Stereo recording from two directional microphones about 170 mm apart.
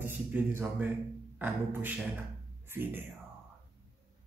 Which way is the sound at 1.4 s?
10° right (ahead or behind).